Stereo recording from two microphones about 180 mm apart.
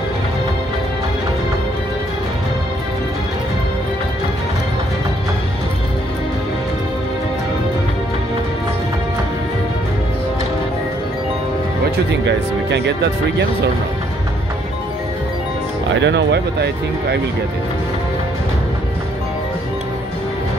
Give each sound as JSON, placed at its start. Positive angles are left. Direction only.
{"t": 12.1, "sound": "speech", "side_deg": -75}
{"t": 16.0, "sound": "speech", "side_deg": -75}